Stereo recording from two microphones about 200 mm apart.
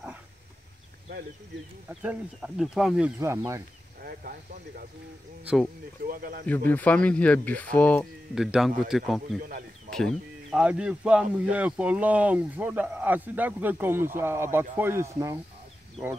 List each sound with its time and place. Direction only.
1.9 s speech: 5° right (ahead or behind)
3.2 s speech: 15° right (ahead or behind)
4.0 s speech: 50° right (ahead or behind)
5.4 s speech: 5° right (ahead or behind)
6.0 s speech: 45° right (ahead or behind)
6.4 s speech: 10° left (ahead or behind); by 15.4 s 15° right (ahead or behind)